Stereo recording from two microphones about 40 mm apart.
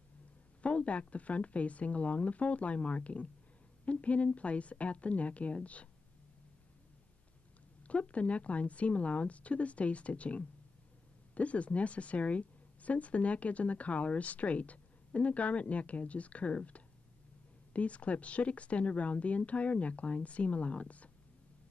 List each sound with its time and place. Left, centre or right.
0.6 s a woman's voice: left
7.8 s a woman's voice: left